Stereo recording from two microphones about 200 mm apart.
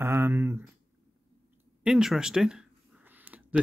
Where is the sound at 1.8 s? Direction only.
5° right (ahead or behind).